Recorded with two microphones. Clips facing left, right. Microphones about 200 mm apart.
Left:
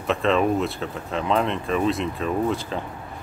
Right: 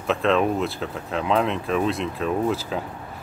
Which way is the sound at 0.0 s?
Centre (ahead or behind).